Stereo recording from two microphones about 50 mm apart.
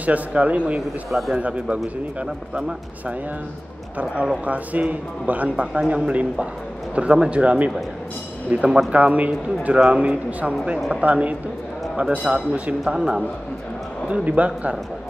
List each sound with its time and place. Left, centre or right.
0.0 s speech: right
0.7 s speech: centre
1.4 s speech: right
4.0 s speech: right
12.8 s a man's voice: centre
14.2 s speech: right